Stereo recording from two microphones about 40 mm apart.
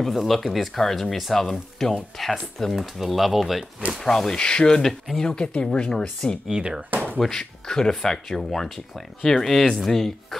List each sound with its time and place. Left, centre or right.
0.0 s speech: centre
4.4 s speech: left
6.5 s speech: centre
6.9 s a sound: right
7.2 s speech: centre